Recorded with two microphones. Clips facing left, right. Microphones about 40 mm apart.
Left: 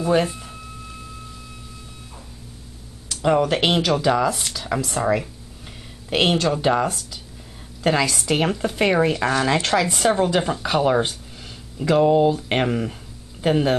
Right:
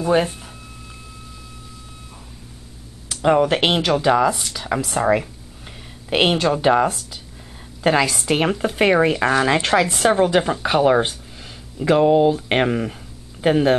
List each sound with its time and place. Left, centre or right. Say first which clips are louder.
0.0 s speech: right 1 dB; centre
3.1 s a sound: right 2 dB; right
3.4 s speech: right 1 dB; centre